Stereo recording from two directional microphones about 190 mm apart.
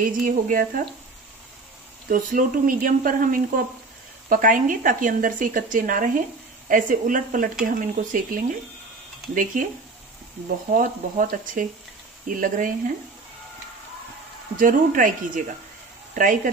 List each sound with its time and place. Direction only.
0.0 s a woman's voice: 45° right (ahead or behind)
2.0 s a woman's voice: 45° right (ahead or behind)
10.7 s a woman's voice: 45° right (ahead or behind)
14.6 s a woman's voice: 45° right (ahead or behind)